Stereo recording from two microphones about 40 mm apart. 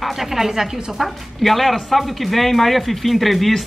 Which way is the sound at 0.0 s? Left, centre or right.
Centre.